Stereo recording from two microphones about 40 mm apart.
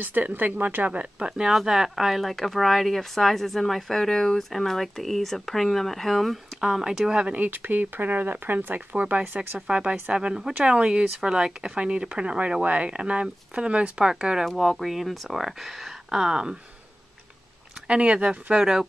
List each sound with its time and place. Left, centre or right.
0.2 s speech: right
1.5 s speech: centre
6.6 s speech: centre
7.3 s speech: right
9.7 s speech: right
10.1 s speech: centre
14.9 s speech: centre
17.8 s speech: right
18.6 s speech: centre